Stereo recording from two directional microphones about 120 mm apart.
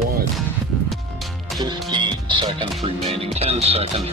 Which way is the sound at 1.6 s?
40° right (ahead or behind).